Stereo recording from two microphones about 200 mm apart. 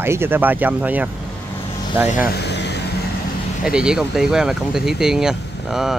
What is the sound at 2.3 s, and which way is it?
Vehicle, 55° left (ahead or behind).